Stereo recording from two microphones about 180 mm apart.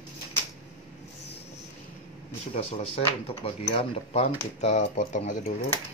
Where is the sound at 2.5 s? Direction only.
35° left (ahead or behind).